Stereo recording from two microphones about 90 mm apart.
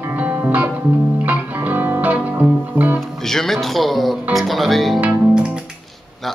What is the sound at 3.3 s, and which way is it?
Music, 5° left (ahead or behind).